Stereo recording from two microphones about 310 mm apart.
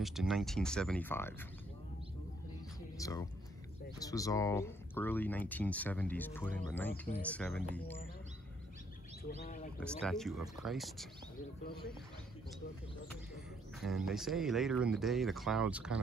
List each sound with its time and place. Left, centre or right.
0.0 s speech: centre
3.0 s speech: centre
9.4 s speech: left
9.8 s speech: centre
11.6 s speech: left
13.7 s speech: centre